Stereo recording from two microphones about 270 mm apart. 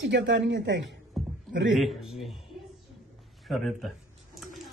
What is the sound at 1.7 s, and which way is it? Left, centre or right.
Speech, centre.